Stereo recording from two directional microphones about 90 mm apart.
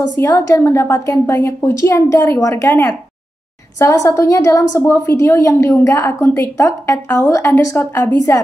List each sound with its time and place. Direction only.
0.2 s a woman's voice: 35° left (ahead or behind)
3.8 s a woman's voice: 35° left (ahead or behind)